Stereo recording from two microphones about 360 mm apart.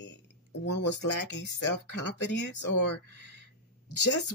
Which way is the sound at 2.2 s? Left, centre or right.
Left.